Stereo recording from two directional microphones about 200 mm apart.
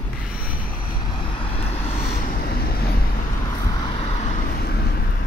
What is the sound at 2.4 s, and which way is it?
Vehicle, 50° left (ahead or behind).